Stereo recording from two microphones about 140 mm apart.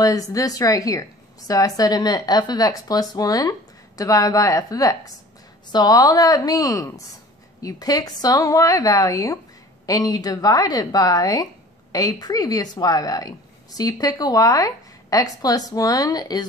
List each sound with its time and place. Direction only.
0.0 s speech: 25° left (ahead or behind)